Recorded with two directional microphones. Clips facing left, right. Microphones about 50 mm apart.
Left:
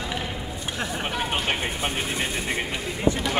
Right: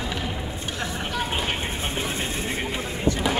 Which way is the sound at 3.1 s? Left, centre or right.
Left.